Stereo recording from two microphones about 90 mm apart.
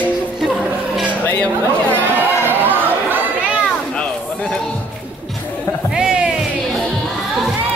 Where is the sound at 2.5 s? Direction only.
20° right (ahead or behind).